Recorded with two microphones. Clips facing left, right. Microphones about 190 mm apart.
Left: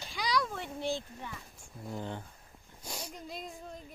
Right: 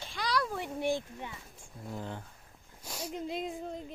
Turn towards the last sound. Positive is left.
turn(degrees=-30)  # may be behind; listen again after turning